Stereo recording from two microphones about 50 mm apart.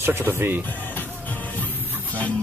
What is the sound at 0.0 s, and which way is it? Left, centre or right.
Speech, right.